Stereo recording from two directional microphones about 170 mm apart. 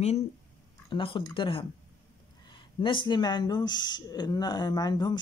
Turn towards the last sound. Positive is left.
turn(degrees=25)  # may be behind; listen again after turning